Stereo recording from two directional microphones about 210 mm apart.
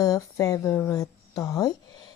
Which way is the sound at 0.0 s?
15° left (ahead or behind).